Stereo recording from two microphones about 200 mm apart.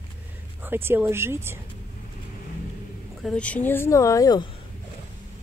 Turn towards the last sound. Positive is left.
turn(degrees=20)  # may be behind; listen again after turning